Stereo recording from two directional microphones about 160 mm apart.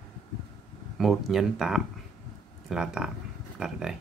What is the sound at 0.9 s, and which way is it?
Speech, centre (ahead or behind).